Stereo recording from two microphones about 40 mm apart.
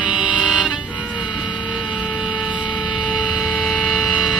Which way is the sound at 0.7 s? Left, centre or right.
Centre.